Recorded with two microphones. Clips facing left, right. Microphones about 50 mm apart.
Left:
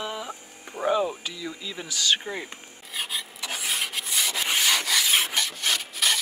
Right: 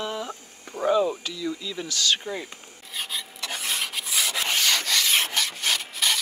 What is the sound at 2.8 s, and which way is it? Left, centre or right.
Rub, centre.